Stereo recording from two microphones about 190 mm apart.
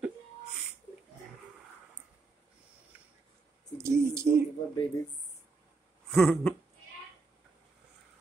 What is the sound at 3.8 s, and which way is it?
Speech, 15° right (ahead or behind).